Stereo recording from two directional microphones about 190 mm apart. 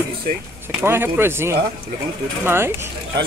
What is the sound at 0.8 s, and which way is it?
Speech, 10° right (ahead or behind).